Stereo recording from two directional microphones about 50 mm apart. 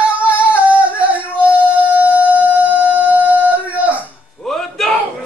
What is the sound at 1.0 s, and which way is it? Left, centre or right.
Music, right.